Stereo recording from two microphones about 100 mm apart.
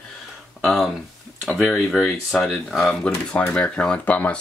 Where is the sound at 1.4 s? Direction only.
Centre (ahead or behind).